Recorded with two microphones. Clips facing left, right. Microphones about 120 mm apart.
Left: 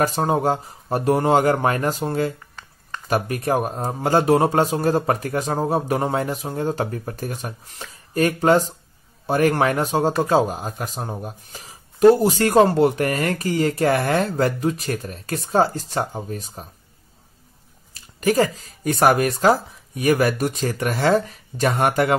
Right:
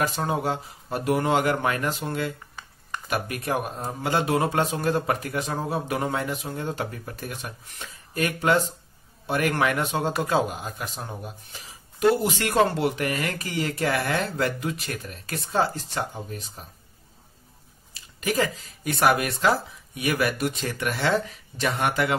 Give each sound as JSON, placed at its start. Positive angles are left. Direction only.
{"t": 0.0, "sound": "speech", "side_deg": 40}
{"t": 18.2, "sound": "speech", "side_deg": 40}